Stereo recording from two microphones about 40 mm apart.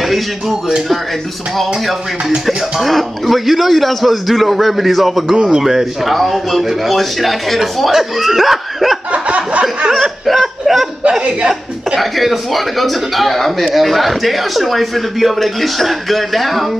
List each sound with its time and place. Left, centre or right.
0.1 s a man's voice: centre
5.3 s speech: centre
5.6 s a man's voice: centre
9.1 s a sound: right
9.9 s chuckle: centre
11.1 s chuckle: right
12.0 s a man's voice: centre